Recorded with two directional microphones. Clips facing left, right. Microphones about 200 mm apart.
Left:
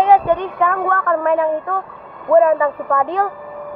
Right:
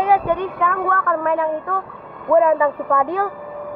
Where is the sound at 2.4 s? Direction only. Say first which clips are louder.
Left 2 dB; 15° right (ahead or behind).